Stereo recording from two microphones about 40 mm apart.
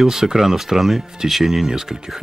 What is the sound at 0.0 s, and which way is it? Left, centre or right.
Speech, centre.